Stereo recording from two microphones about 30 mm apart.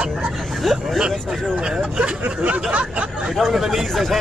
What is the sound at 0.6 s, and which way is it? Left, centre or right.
Speech, centre.